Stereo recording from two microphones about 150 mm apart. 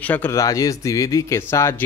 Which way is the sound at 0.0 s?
10° left (ahead or behind).